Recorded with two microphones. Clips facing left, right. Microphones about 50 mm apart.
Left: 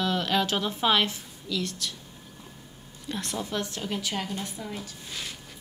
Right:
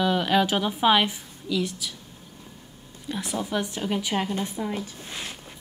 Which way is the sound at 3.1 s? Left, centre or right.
Centre.